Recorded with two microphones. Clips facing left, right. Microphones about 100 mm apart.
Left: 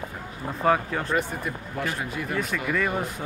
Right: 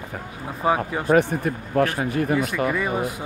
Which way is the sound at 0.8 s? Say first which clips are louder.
Right 6 dB; 15° right (ahead or behind).